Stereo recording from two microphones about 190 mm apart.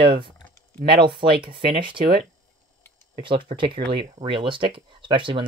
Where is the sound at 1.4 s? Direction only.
25° right (ahead or behind).